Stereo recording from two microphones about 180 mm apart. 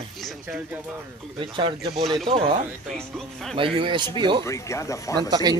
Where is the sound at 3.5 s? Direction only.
30° right (ahead or behind).